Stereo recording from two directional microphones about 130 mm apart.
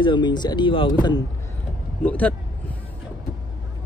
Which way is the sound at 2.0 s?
10° left (ahead or behind).